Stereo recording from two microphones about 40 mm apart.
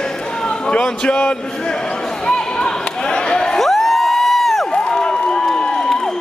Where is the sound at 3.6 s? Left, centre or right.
Centre.